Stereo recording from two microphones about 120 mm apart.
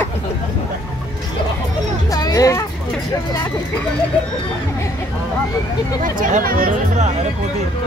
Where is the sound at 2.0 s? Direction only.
30° left (ahead or behind).